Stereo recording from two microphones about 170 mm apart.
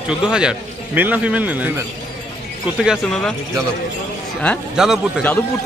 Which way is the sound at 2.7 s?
5° right (ahead or behind).